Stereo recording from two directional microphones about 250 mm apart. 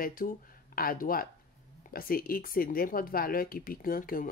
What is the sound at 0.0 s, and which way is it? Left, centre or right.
Speech, left.